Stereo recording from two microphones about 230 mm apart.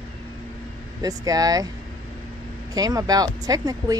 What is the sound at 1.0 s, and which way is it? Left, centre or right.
Speech, centre.